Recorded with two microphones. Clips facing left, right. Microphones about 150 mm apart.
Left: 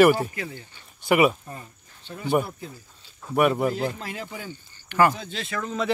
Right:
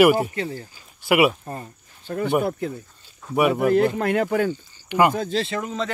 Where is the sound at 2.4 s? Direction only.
65° right (ahead or behind).